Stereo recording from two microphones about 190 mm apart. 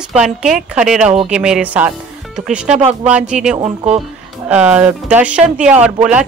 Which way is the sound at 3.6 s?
30° right (ahead or behind).